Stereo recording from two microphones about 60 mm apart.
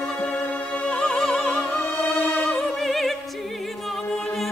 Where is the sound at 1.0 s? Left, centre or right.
Centre.